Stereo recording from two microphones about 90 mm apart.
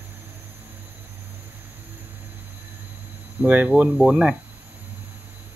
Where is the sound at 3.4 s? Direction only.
15° right (ahead or behind).